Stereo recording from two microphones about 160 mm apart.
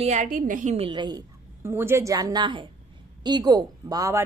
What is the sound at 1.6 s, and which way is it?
A woman's voice, 15° right (ahead or behind).